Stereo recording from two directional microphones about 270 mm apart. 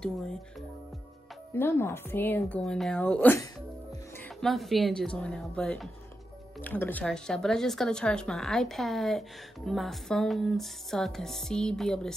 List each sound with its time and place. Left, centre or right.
0.0 s speech: centre